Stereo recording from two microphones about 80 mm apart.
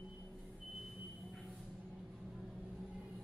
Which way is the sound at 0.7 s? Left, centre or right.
Centre.